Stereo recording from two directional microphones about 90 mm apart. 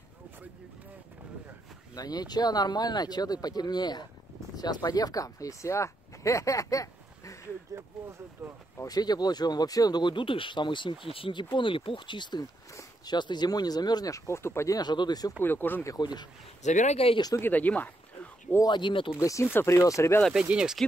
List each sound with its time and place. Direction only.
2.0 s speech: 45° left (ahead or behind)
7.7 s speech: 35° right (ahead or behind)
8.8 s speech: 50° left (ahead or behind); by 11.1 s 65° left (ahead or behind)
11.1 s speech: 75° left (ahead or behind); by 14.8 s 30° left (ahead or behind)
14.8 s speech: 50° left (ahead or behind)
15.4 s speech: 20° left (ahead or behind)
16.0 s speech: 55° left (ahead or behind)
17.0 s speech: 90° left
17.4 s speech: 20° left (ahead or behind)
18.6 s speech: 55° left (ahead or behind)
19.1 s speech: 35° left (ahead or behind)
20.4 s speech: 10° right (ahead or behind)